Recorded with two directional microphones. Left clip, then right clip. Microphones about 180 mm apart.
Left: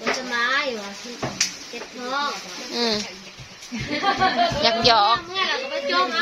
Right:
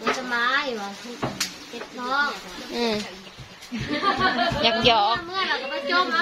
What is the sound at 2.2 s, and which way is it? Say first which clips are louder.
Speech: left 1 dB; centre (ahead or behind).